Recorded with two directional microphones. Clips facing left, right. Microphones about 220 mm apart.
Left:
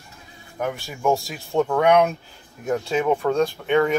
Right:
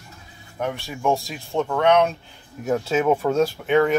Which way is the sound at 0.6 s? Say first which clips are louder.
Even; 5° left (ahead or behind).